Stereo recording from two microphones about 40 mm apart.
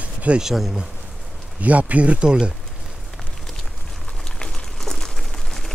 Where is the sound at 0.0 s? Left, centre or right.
Right.